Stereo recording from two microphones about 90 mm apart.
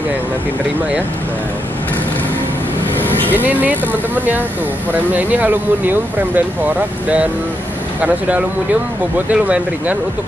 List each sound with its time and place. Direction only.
3.0 s vehicle: 20° left (ahead or behind)
3.3 s speech: 20° right (ahead or behind)
9.3 s speech: 15° right (ahead or behind)